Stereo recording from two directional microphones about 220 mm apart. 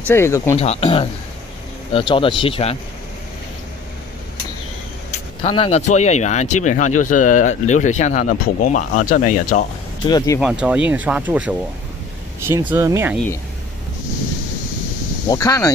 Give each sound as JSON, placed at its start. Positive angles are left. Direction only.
{"t": 0.0, "sound": "speech", "side_deg": 10}
{"t": 0.6, "sound": "speech", "side_deg": 25}
{"t": 5.4, "sound": "speech", "side_deg": 25}
{"t": 10.0, "sound": "speech", "side_deg": 15}
{"t": 10.4, "sound": "speech", "side_deg": -5}
{"t": 15.2, "sound": "speech", "side_deg": 15}